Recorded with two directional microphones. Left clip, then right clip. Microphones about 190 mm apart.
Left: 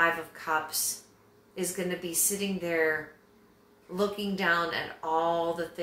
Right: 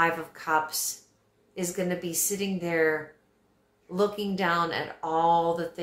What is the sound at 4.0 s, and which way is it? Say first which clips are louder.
Speech: right 3 dB; 40° right (ahead or behind).